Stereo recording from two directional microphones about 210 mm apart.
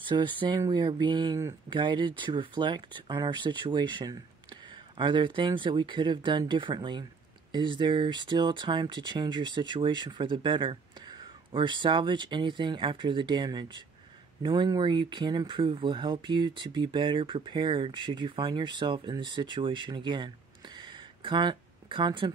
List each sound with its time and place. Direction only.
0.0 s speech: 20° right (ahead or behind)